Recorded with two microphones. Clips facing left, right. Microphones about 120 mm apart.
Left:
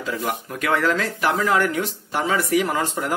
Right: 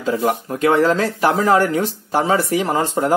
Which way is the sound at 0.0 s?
30° right (ahead or behind).